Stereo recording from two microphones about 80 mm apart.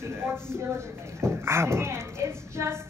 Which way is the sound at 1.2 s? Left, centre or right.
Right.